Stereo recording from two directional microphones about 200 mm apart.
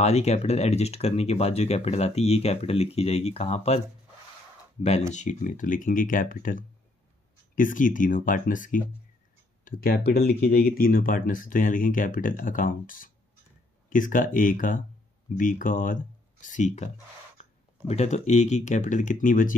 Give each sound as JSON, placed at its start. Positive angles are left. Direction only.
{"t": 0.0, "sound": "speech", "side_deg": 35}
{"t": 5.1, "sound": "speech", "side_deg": 35}